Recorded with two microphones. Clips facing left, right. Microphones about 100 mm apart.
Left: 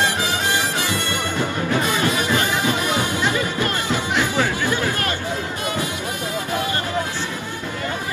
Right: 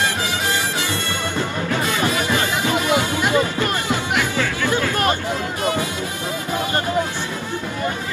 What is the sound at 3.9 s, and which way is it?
Music, 20° left (ahead or behind).